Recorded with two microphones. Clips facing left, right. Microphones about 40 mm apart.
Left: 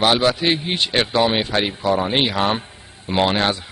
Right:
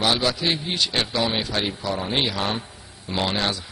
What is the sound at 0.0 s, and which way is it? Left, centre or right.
Speech, left.